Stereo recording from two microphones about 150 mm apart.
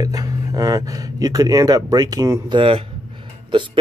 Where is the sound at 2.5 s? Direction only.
35° right (ahead or behind).